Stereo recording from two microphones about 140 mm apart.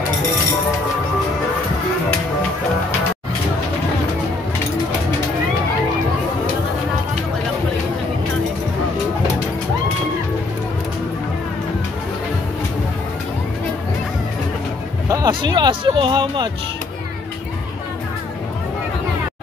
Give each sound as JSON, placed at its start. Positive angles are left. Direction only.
{"t": 15.0, "sound": "hubbub", "side_deg": -25}